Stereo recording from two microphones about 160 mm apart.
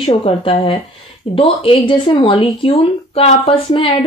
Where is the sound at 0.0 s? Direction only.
35° left (ahead or behind).